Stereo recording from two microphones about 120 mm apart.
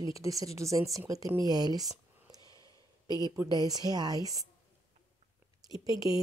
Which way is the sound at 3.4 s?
35° right (ahead or behind).